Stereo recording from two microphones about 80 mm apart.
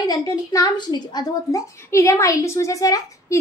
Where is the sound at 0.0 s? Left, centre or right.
Left.